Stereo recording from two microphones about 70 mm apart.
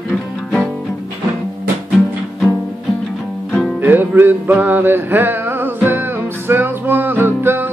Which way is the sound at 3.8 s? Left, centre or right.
Right.